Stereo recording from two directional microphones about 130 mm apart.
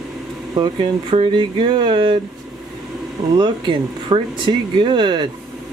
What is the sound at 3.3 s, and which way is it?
Speech, 40° right (ahead or behind).